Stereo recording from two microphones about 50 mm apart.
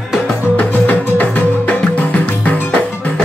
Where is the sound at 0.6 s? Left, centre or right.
Left.